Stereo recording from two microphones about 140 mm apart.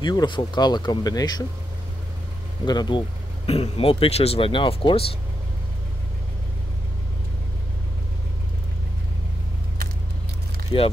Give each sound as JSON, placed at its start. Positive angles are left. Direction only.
{"t": 0.0, "sound": "speech", "side_deg": 30}
{"t": 2.6, "sound": "speech", "side_deg": 30}
{"t": 3.4, "sound": "speech", "side_deg": 45}